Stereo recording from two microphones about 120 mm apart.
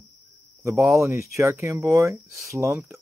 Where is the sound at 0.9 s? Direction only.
25° right (ahead or behind).